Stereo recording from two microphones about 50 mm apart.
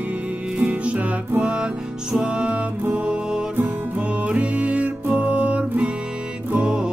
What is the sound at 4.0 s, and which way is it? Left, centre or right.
Music, right.